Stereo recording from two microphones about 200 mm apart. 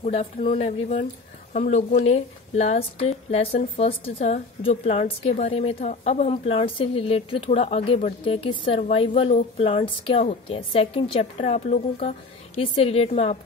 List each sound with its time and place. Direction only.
0.0 s a woman's voice: 30° left (ahead or behind)